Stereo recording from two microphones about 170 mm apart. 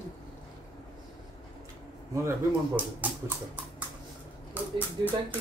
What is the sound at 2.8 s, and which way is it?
Speech, 10° right (ahead or behind).